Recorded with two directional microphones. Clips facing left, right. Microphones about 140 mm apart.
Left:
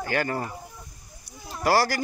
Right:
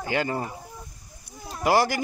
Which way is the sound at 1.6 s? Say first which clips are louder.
Right 1 dB; 20° right (ahead or behind).